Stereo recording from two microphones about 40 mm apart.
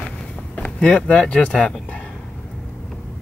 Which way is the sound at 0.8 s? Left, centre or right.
Left.